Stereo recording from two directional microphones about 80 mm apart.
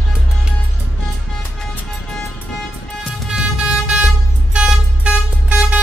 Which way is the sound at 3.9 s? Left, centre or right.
Centre.